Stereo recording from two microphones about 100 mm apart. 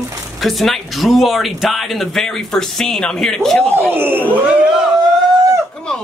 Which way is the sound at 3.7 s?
20° right (ahead or behind).